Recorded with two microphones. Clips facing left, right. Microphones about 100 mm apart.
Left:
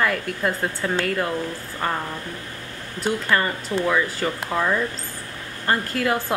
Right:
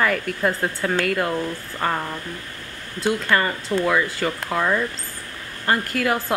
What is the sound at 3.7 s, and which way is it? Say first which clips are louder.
Speech: right 2 dB; 10° left (ahead or behind).